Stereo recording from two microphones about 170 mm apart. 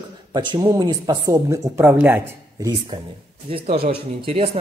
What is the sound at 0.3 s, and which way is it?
Speech, 25° right (ahead or behind).